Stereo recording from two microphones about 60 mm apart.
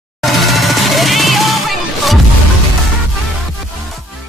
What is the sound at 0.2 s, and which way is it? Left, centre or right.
Music, centre.